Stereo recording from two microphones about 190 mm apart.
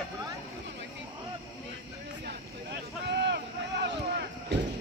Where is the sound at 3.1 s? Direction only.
60° right (ahead or behind).